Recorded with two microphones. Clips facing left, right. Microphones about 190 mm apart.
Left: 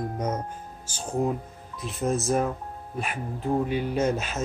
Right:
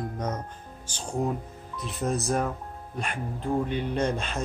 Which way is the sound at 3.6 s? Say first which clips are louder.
Left 2 dB; 5° left (ahead or behind).